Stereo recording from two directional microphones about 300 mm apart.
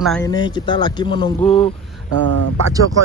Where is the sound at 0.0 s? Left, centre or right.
Centre.